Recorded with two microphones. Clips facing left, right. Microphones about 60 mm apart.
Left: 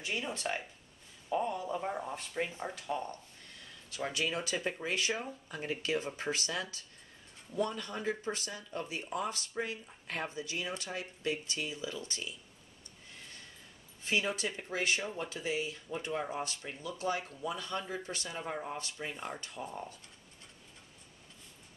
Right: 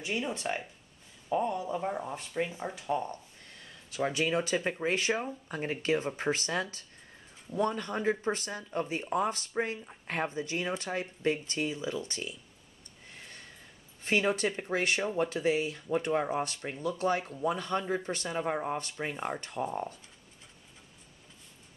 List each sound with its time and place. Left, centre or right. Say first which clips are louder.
0.0 s speech: right 3 dB; centre
4.3 s speech: right 6 dB; right
4.8 s speech: right 5 dB; right
14.0 s speech: right 5 dB; right